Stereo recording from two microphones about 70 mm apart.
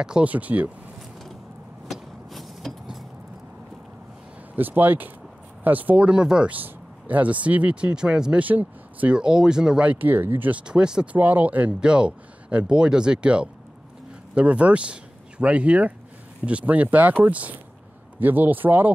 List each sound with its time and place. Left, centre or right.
0.0 s speech: centre
0.3 s speech: right
1.9 s vehicle: centre
4.6 s speech: right; by 6.5 s centre
6.5 s speech: right
8.5 s speech: right
9.2 s speech: centre
9.8 s speech: right
10.7 s speech: centre
11.1 s speech: right